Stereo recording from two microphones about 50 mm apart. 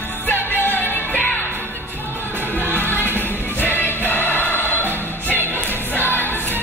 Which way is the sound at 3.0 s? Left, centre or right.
Left.